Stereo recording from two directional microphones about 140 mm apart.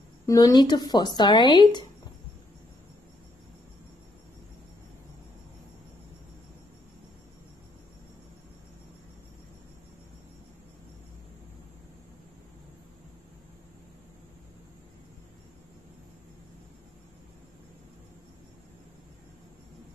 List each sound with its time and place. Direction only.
0.3 s speech: 25° left (ahead or behind)